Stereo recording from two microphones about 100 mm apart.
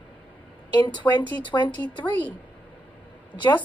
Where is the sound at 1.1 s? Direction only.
20° left (ahead or behind).